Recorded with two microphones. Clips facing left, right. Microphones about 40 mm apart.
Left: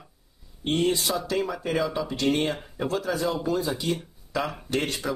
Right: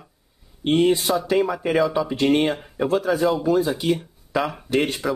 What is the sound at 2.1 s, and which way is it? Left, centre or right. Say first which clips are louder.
Speech: right 6 dB; right.